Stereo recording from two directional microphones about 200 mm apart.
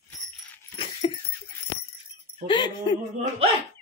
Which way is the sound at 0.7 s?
25° left (ahead or behind).